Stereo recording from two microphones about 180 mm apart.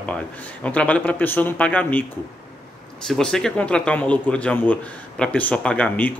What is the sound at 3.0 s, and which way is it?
Speech, 5° left (ahead or behind).